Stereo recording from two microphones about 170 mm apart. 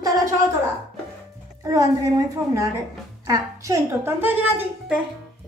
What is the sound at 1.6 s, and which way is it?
A woman's voice, 20° right (ahead or behind).